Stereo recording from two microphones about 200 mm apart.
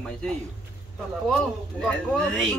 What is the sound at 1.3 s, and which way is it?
Speech, 5° left (ahead or behind).